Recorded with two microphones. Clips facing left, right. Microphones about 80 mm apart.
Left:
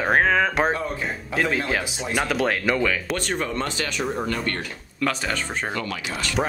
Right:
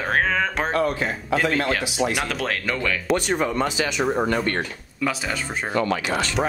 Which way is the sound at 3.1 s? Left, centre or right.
Centre.